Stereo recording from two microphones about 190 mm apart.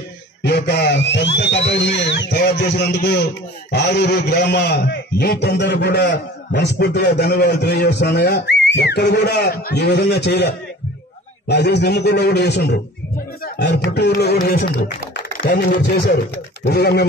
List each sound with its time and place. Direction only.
0.4 s a man's voice: 60° left (ahead or behind)
16.6 s a man's voice: 60° left (ahead or behind)